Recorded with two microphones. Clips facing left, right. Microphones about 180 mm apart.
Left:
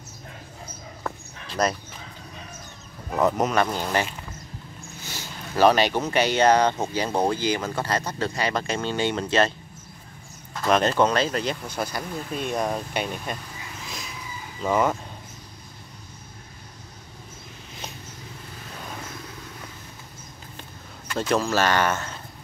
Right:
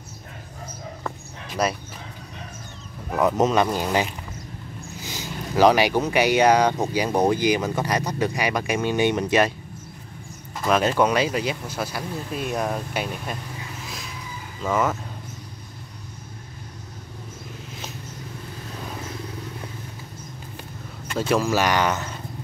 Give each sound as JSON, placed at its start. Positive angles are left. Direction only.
{"t": 1.5, "sound": "speech", "side_deg": -10}
{"t": 3.2, "sound": "speech", "side_deg": -20}
{"t": 10.5, "sound": "speech", "side_deg": -10}
{"t": 14.6, "sound": "speech", "side_deg": 0}
{"t": 21.2, "sound": "speech", "side_deg": -10}